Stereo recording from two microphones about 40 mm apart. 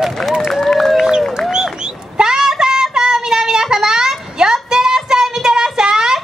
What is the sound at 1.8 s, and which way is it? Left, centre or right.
Child singing, centre.